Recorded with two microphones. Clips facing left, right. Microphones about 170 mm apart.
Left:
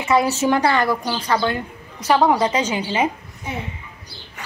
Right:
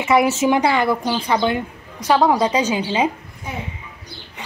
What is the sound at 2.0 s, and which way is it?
Speech, 5° left (ahead or behind).